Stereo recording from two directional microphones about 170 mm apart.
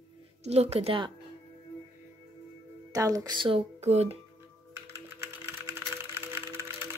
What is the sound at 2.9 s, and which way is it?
Speech, 20° right (ahead or behind).